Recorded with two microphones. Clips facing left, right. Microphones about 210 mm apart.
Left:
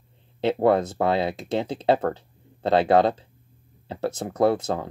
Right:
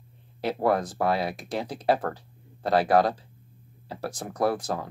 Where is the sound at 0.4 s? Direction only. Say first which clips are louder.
Left 5 dB; 25° left (ahead or behind).